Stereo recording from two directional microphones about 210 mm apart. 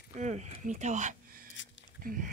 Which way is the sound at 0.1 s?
35° right (ahead or behind).